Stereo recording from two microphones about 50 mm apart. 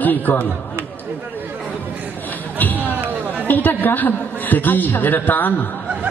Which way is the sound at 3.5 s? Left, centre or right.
Left.